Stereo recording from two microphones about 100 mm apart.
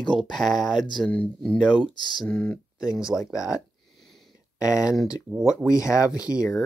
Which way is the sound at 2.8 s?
35° left (ahead or behind).